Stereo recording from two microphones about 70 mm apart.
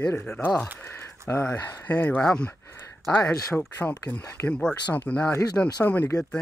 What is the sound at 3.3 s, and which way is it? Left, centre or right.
Speech, left.